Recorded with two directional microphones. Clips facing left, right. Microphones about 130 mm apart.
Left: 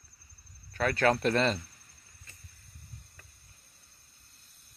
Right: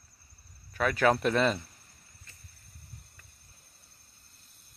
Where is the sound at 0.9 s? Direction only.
5° right (ahead or behind).